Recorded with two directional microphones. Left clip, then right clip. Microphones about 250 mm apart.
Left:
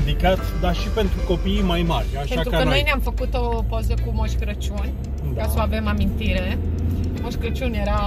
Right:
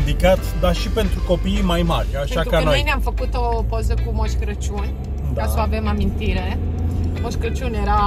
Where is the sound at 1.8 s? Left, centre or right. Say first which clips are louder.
Right 3 dB; centre.